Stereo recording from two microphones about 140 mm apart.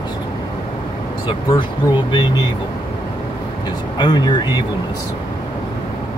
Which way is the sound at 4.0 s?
35° left (ahead or behind).